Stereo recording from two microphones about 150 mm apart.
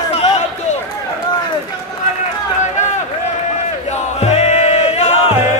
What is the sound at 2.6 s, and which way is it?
Run, 50° left (ahead or behind).